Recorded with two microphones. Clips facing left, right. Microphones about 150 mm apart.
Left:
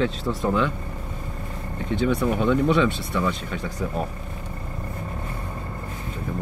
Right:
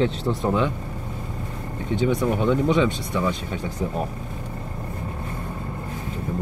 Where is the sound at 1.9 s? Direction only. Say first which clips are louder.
Right 1 dB; 15° right (ahead or behind).